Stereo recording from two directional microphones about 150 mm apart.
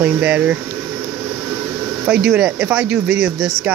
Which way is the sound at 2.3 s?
5° right (ahead or behind).